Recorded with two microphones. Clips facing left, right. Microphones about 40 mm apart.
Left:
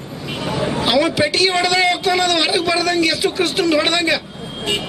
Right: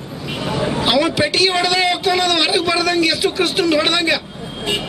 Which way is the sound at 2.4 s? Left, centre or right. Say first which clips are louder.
Right 1 dB; right.